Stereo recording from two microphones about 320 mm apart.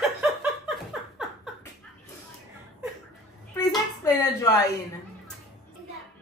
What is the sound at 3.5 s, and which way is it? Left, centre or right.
Speech, centre.